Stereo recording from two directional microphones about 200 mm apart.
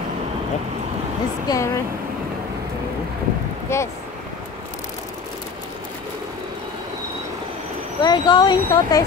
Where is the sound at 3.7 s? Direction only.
15° left (ahead or behind).